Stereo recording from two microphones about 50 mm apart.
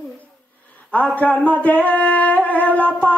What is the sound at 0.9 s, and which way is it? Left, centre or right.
Music, left.